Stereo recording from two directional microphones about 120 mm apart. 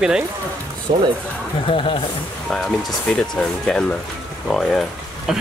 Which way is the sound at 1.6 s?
50° left (ahead or behind).